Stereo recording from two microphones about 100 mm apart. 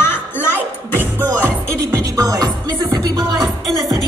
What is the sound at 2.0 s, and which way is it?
Music, 40° right (ahead or behind).